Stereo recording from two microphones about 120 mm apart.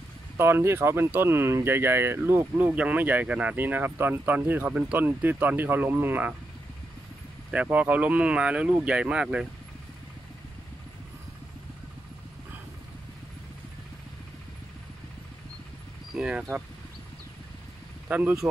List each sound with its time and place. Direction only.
0.4 s speech: 20° right (ahead or behind)
7.5 s speech: 10° right (ahead or behind)
16.2 s speech: 10° right (ahead or behind)
18.0 s speech: 15° right (ahead or behind)